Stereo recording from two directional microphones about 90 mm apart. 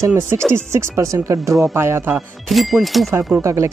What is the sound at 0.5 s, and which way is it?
Speech, 30° right (ahead or behind).